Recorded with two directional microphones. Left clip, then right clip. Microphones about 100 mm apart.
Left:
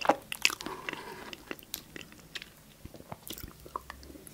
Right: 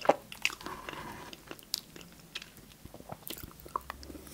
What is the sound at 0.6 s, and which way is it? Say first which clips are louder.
Biting: left 2 dB; 45° left (ahead or behind).